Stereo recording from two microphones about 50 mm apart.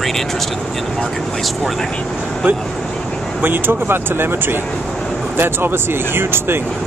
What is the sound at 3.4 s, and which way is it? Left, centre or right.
Speech, right.